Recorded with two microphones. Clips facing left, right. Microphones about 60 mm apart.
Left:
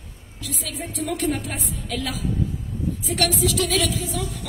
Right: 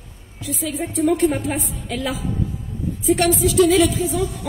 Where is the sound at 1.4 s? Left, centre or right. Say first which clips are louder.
Right 6 dB; centre.